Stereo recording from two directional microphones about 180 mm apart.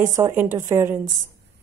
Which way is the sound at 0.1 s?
15° right (ahead or behind).